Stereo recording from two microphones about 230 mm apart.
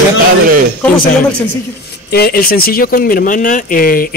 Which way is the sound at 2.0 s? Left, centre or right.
Left.